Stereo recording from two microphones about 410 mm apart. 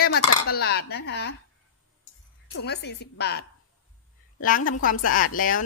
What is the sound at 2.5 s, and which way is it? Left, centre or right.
Speech, left.